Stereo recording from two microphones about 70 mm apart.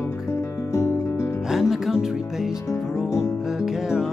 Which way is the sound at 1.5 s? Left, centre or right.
Centre.